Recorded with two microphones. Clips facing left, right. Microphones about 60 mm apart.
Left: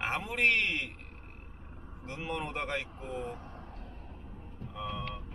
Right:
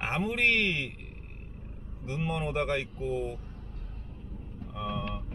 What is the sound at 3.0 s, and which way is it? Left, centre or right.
Speech, left.